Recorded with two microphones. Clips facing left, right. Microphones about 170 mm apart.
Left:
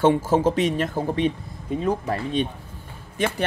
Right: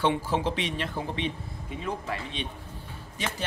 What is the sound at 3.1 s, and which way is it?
Speech, 55° left (ahead or behind).